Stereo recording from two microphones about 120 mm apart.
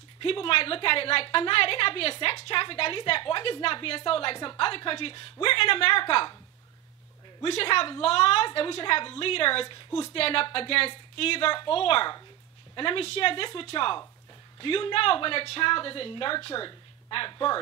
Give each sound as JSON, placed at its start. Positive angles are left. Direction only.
{"t": 0.2, "sound": "a woman's voice", "side_deg": 50}
{"t": 7.4, "sound": "a woman's voice", "side_deg": 50}